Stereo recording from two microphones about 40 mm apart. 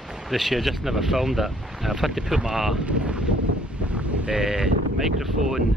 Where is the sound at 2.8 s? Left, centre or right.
Right.